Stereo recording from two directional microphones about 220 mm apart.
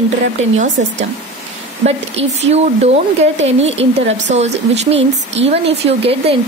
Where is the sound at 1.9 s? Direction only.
30° right (ahead or behind).